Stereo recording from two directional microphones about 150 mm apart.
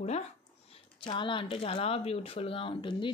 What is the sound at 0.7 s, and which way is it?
Speech, 35° left (ahead or behind).